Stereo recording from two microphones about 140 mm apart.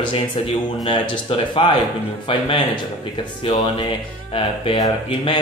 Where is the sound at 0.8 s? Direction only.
35° left (ahead or behind).